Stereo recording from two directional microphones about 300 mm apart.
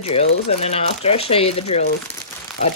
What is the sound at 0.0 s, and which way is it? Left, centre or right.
Speech, centre.